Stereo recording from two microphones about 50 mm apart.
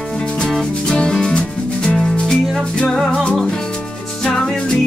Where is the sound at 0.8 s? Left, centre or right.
Centre.